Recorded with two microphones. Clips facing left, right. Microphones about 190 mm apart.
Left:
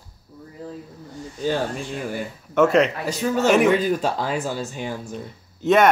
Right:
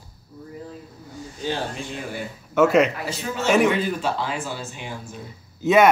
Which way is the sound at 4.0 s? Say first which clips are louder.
Left 2 dB; 40° left (ahead or behind).